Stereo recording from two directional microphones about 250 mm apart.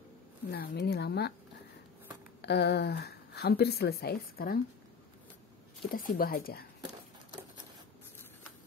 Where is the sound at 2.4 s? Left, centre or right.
Left.